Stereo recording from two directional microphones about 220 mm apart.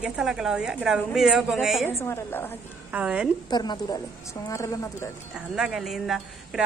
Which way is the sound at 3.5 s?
20° left (ahead or behind).